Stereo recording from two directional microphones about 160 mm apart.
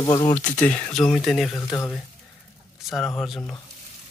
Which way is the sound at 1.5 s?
20° left (ahead or behind).